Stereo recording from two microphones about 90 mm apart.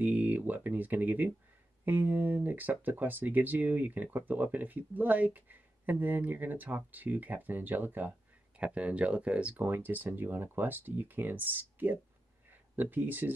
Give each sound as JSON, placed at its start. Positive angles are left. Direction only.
{"t": 0.0, "sound": "speech", "side_deg": -20}